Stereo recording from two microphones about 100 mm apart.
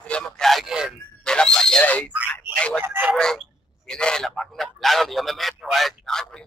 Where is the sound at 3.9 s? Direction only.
10° left (ahead or behind).